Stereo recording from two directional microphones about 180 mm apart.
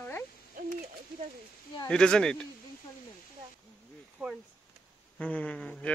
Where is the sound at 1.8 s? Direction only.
5° left (ahead or behind).